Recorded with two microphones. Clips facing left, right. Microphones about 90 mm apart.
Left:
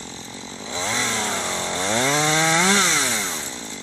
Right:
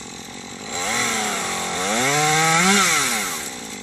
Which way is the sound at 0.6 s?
30° left (ahead or behind).